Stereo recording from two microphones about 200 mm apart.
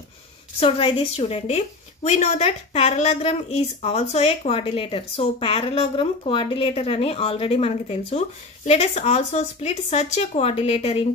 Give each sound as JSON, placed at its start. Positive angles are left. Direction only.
{"t": 0.6, "sound": "a woman's voice", "side_deg": 25}